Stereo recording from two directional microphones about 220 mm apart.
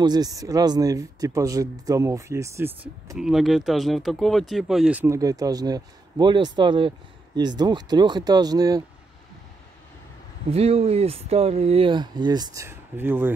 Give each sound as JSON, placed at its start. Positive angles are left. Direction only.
{"t": 0.0, "sound": "speech", "side_deg": -20}
{"t": 3.2, "sound": "speech", "side_deg": 0}
{"t": 10.5, "sound": "speech", "side_deg": -30}